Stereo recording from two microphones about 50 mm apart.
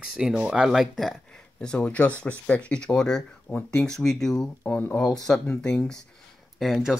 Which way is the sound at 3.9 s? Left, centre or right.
Centre.